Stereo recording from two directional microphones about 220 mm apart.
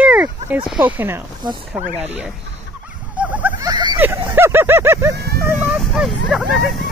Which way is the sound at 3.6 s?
20° right (ahead or behind).